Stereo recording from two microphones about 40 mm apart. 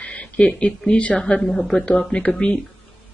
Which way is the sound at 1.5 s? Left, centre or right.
Centre.